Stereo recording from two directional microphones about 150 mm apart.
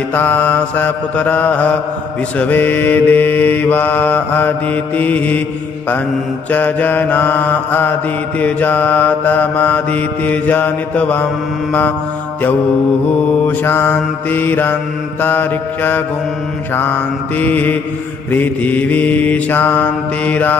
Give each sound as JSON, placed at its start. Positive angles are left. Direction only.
{"t": 0.1, "sound": "mantra", "side_deg": 15}
{"t": 6.5, "sound": "mantra", "side_deg": 10}
{"t": 13.5, "sound": "mantra", "side_deg": 15}